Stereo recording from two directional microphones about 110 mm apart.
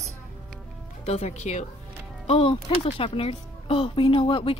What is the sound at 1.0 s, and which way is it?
Speech, 80° left.